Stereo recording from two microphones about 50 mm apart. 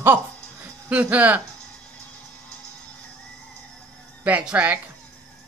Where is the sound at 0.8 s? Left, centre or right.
Right.